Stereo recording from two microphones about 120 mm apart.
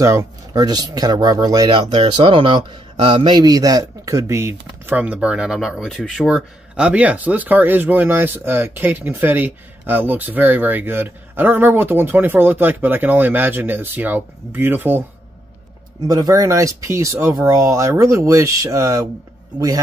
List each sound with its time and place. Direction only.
0.0 s speech: 25° right (ahead or behind)
16.1 s speech: 30° right (ahead or behind)